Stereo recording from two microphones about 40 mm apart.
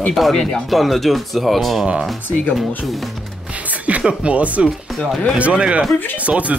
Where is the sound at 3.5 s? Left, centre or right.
Right.